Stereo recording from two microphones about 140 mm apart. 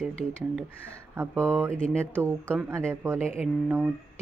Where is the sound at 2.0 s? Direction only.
10° left (ahead or behind).